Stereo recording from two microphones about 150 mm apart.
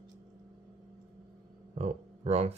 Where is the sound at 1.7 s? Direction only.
45° right (ahead or behind).